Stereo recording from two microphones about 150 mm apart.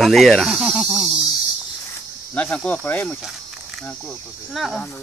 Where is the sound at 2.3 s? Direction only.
10° left (ahead or behind).